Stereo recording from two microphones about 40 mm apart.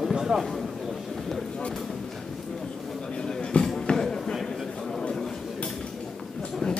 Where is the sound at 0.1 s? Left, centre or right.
Centre.